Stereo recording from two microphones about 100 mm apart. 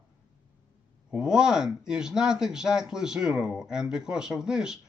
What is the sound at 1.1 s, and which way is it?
Speech, 5° right (ahead or behind).